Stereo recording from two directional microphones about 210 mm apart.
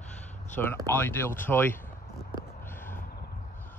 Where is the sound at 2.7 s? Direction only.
10° left (ahead or behind).